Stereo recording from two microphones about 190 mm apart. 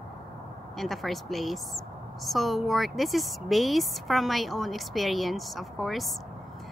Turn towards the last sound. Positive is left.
turn(degrees=0)  # may be behind; listen again after turning